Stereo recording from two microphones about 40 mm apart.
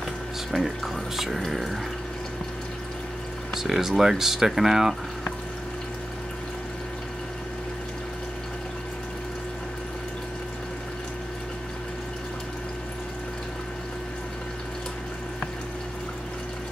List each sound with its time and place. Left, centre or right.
0.5 s speech: centre
1.1 s speech: centre
3.5 s speech: centre